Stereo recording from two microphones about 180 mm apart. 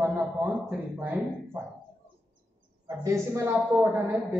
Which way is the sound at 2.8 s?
15° right (ahead or behind).